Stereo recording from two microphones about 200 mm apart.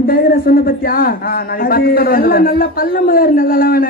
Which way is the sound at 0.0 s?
45° left (ahead or behind).